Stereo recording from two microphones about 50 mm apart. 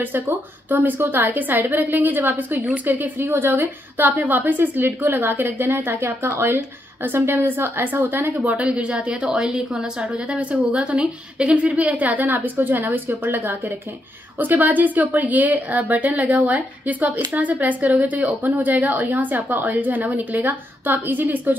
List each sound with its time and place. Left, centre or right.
0.0 s a woman's voice: right
3.2 s a woman's voice: right
8.4 s a woman's voice: right